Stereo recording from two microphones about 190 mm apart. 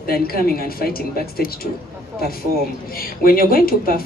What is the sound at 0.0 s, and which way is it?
Speech, 50° left (ahead or behind).